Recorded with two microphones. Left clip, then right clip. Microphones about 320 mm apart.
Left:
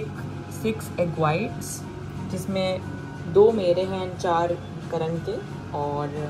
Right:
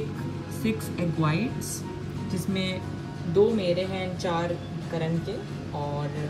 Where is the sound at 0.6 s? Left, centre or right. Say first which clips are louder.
Left 5 dB; centre.